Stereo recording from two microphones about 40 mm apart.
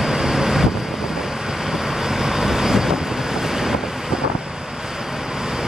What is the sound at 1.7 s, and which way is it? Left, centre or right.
Vehicle, centre.